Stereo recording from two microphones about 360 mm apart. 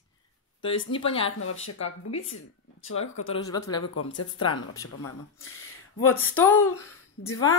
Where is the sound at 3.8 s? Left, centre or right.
Left.